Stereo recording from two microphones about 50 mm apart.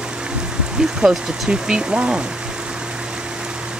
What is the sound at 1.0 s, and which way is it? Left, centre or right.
Speech, centre.